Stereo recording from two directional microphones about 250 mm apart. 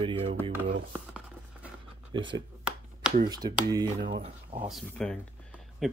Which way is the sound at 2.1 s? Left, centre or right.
Centre.